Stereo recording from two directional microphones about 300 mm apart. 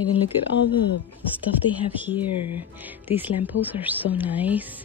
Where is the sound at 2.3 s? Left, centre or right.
Left.